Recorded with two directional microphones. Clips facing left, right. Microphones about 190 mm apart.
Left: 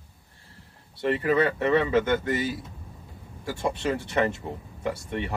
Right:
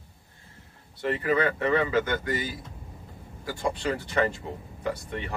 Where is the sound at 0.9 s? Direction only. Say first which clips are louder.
Left 3 dB; 30° left (ahead or behind).